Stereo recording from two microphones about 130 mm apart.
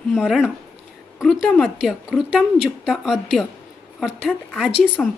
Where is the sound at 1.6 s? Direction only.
Centre (ahead or behind).